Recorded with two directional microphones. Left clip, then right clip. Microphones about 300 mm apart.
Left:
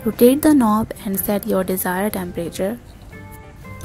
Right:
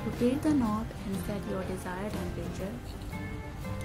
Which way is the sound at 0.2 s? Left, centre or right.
Left.